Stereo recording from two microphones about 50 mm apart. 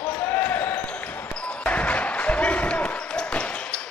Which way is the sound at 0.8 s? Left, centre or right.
Left.